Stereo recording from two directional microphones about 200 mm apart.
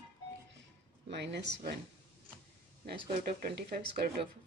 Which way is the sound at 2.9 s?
50° right (ahead or behind).